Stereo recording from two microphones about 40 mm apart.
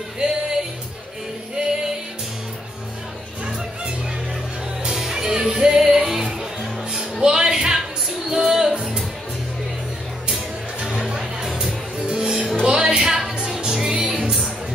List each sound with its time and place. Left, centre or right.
0.2 s music: right
4.8 s music: centre
10.8 s music: centre